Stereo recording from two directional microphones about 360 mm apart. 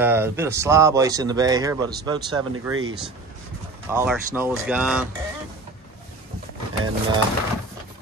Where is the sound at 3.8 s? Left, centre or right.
Centre.